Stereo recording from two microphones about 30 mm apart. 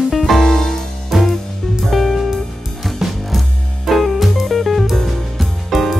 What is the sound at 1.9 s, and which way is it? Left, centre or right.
Music, centre.